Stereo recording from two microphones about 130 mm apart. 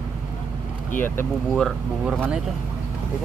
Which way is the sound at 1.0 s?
15° left (ahead or behind).